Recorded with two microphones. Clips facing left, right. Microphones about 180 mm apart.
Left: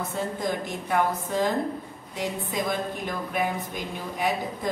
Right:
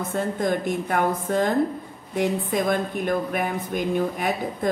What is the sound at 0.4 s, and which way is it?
Speech, 55° right (ahead or behind).